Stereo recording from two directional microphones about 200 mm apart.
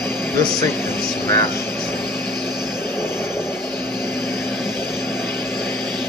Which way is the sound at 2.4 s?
10° left (ahead or behind).